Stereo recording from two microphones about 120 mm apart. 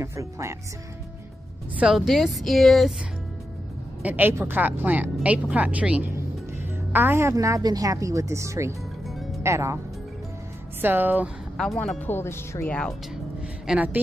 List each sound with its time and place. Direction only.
0.0 s a woman's voice: 25° right (ahead or behind)
1.8 s a woman's voice: 5° right (ahead or behind)
4.0 s a woman's voice: 15° right (ahead or behind)
9.0 s music: centre (ahead or behind)
9.4 s a woman's voice: 25° right (ahead or behind)
10.8 s speech: 15° right (ahead or behind)
11.5 s a woman's voice: 5° left (ahead or behind)
12.1 s speech: 20° left (ahead or behind)
13.7 s speech: 10° right (ahead or behind)